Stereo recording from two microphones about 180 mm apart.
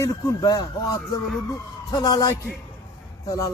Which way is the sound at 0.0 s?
20° left (ahead or behind).